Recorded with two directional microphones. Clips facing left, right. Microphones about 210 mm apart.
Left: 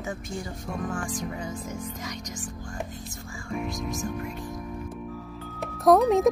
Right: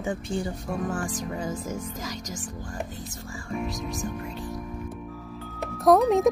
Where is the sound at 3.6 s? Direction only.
Centre (ahead or behind).